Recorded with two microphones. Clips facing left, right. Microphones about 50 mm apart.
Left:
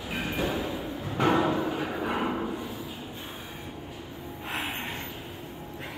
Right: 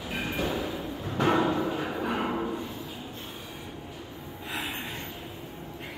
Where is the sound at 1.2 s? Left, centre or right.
Centre.